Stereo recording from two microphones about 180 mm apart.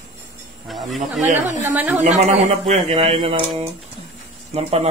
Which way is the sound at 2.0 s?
35° right (ahead or behind).